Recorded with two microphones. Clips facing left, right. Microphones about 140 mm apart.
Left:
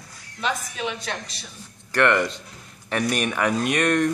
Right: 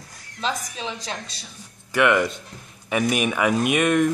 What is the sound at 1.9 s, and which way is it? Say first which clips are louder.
Speech: right 1 dB; 5° right (ahead or behind).